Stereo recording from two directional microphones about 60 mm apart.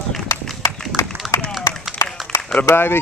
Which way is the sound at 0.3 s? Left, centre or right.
Left.